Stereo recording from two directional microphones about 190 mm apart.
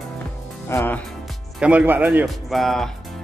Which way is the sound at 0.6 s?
10° left (ahead or behind).